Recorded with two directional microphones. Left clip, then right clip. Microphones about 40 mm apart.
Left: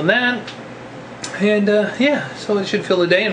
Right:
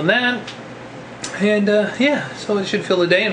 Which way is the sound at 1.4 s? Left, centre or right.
Left.